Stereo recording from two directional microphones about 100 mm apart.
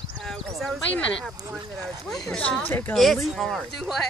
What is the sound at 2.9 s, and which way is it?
Speech, centre (ahead or behind).